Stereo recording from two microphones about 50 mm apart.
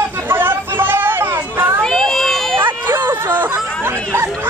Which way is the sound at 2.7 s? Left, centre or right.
Right.